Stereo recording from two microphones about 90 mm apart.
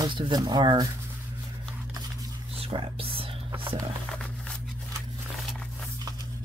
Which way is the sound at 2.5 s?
90° right.